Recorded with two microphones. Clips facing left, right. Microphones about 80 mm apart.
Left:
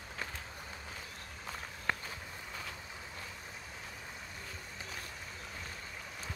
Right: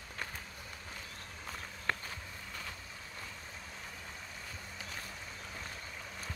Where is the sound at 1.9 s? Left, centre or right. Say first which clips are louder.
Even; centre.